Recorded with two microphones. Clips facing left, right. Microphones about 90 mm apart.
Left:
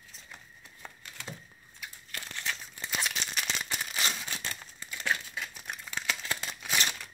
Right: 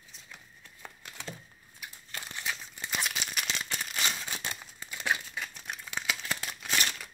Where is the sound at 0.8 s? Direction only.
5° right (ahead or behind).